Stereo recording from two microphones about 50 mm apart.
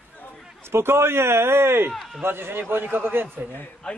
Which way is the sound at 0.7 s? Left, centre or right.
Right.